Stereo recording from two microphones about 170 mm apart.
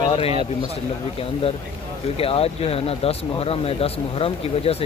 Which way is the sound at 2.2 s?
35° left (ahead or behind).